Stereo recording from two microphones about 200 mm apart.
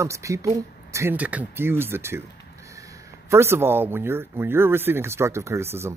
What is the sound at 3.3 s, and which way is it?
Speech, 10° right (ahead or behind).